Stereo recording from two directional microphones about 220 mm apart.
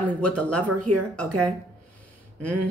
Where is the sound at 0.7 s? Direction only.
90° right.